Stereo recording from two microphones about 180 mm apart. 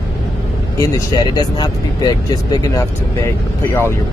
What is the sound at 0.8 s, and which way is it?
Speech, 20° left (ahead or behind).